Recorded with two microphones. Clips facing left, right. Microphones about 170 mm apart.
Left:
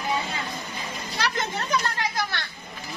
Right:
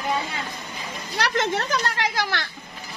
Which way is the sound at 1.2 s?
80° right.